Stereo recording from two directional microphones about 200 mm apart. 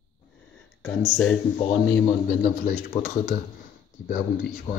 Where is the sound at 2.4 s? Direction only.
40° left (ahead or behind).